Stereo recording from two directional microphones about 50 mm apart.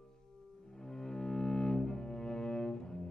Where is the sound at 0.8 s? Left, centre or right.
Centre.